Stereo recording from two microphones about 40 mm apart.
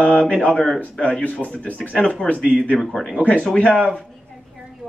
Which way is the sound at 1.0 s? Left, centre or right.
Left.